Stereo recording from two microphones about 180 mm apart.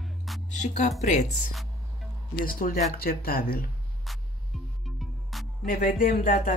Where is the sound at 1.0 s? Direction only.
40° left (ahead or behind).